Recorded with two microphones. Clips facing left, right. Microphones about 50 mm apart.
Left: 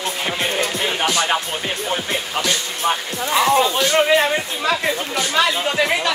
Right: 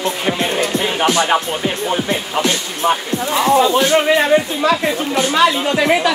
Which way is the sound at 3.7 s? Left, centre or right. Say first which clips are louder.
Right 5 dB; right.